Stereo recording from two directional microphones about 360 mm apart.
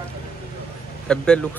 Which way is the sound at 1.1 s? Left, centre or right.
Centre.